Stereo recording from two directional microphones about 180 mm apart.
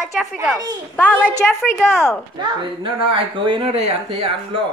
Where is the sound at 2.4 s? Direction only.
30° right (ahead or behind).